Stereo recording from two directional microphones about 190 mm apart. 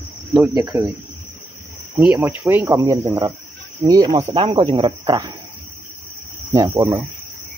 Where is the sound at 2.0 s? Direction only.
10° right (ahead or behind).